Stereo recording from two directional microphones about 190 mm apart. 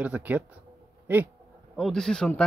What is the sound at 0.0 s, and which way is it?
A man's voice, 10° right (ahead or behind).